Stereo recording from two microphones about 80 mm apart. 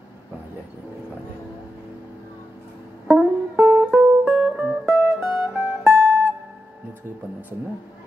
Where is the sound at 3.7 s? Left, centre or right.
Right.